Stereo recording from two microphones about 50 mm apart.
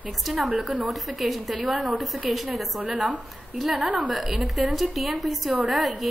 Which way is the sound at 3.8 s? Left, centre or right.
Right.